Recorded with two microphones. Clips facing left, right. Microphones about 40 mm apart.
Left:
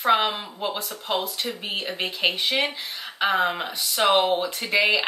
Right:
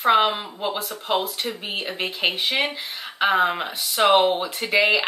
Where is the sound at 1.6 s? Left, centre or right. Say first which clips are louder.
Even; centre.